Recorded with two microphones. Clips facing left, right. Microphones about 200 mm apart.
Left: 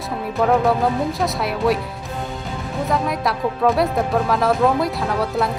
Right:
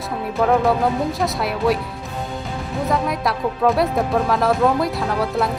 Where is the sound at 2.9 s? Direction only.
Centre (ahead or behind).